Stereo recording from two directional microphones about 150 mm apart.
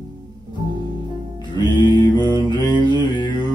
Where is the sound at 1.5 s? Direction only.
30° left (ahead or behind).